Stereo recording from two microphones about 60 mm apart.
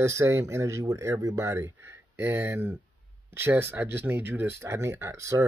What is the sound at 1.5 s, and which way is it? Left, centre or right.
Speech, right.